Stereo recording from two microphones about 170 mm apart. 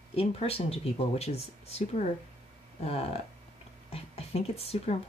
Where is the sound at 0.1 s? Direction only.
35° left (ahead or behind).